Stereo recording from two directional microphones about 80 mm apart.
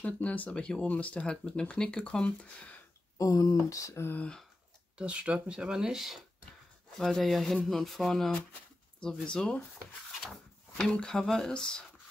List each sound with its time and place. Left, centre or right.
0.0 s speech: centre
3.2 s speech: left
4.0 s speech: left
4.9 s speech: centre